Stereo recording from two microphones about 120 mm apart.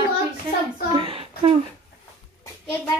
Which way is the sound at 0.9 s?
50° right (ahead or behind).